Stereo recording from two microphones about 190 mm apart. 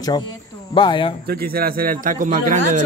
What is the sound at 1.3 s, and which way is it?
A man's voice, 50° right (ahead or behind).